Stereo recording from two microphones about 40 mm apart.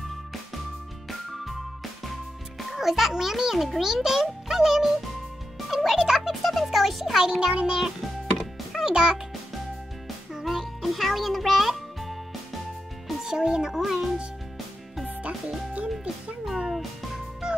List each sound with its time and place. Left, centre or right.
2.7 s a child's voice: centre
5.7 s music: centre
5.9 s music: centre
6.4 s a child's voice: centre
7.2 s a child's voice: centre
8.0 s music: centre
8.8 s a child's voice: centre
10.3 s music: centre
13.2 s a child's voice: centre
15.0 s music: right
16.4 s music: centre